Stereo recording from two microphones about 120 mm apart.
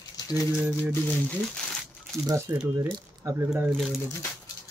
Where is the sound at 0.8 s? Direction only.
10° left (ahead or behind).